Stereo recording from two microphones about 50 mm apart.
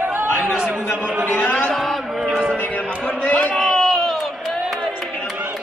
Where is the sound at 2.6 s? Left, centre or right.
Left.